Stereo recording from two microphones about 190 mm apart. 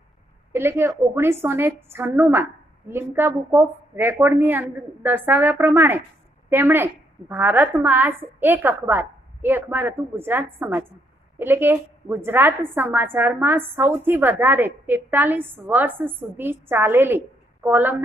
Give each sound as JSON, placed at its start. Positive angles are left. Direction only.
{"t": 0.5, "sound": "a woman's voice", "side_deg": -15}